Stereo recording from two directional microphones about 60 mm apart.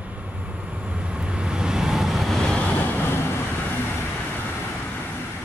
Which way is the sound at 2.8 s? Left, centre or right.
Left.